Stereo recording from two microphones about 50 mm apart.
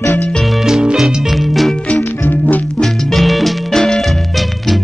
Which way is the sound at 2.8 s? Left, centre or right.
Centre.